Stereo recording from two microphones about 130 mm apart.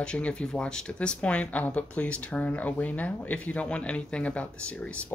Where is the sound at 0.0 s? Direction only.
5° left (ahead or behind).